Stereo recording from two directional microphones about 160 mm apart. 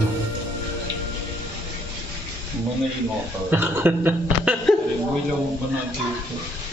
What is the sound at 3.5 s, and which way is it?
A man's voice, 15° right (ahead or behind).